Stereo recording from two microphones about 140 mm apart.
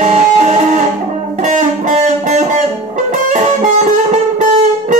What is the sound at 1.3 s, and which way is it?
Music, 60° right (ahead or behind).